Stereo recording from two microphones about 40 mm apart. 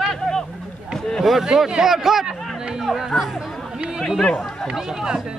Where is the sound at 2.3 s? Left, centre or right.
Centre.